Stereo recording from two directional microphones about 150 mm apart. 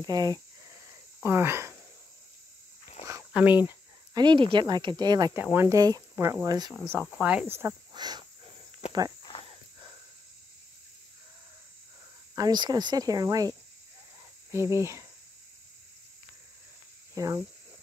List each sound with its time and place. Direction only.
0.0 s speech: 25° right (ahead or behind)
0.8 s cricket: 15° right (ahead or behind)
3.3 s cricket: 10° right (ahead or behind)
4.1 s speech: 30° right (ahead or behind)
5.4 s speech: 15° right (ahead or behind)
6.8 s cricket: 15° right (ahead or behind)
7.9 s speech: 25° right (ahead or behind)
9.2 s cricket: 35° left (ahead or behind)
9.5 s cricket: 35° right (ahead or behind)
12.4 s speech: 25° right (ahead or behind)
17.1 s cricket: 20° right (ahead or behind)